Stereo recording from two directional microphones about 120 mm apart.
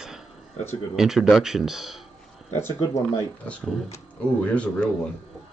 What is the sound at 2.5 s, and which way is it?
Speech, 20° left (ahead or behind).